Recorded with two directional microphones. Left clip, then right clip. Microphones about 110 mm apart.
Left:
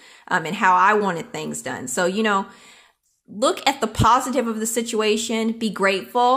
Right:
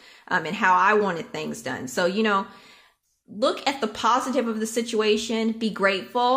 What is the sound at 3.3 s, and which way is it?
A woman's voice, 50° left (ahead or behind).